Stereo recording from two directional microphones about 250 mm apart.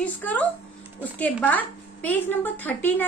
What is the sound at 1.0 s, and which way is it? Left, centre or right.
A woman's voice, centre.